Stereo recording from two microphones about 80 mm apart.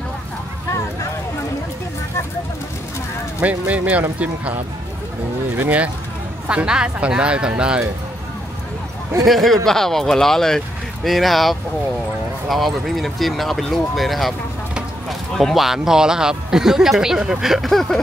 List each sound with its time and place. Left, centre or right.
3.3 s speech: centre
5.6 s speech: centre
9.2 s a man's voice: centre